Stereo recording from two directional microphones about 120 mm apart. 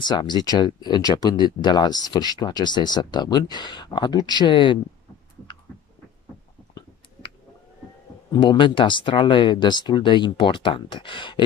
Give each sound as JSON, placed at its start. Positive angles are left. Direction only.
{"t": 0.0, "sound": "speech", "side_deg": 40}
{"t": 8.3, "sound": "speech", "side_deg": 40}